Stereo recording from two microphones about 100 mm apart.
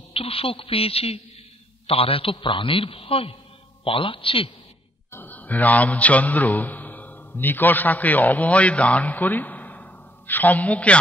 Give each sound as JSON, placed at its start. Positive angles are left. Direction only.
{"t": 0.1, "sound": "a woman's voice", "side_deg": 70}
{"t": 5.1, "sound": "mantra", "side_deg": 15}